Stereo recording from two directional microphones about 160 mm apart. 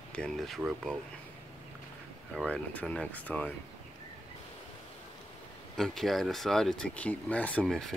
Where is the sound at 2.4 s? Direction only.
5° left (ahead or behind).